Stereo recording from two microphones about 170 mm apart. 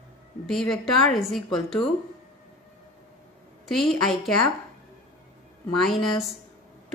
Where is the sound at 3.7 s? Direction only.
Centre (ahead or behind).